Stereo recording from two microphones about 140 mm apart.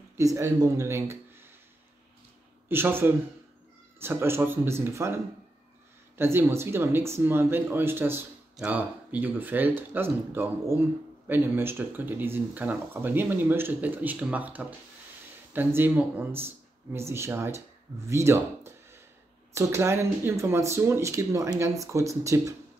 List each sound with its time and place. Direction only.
0.2 s speech: 25° right (ahead or behind)
2.7 s speech: 15° right (ahead or behind)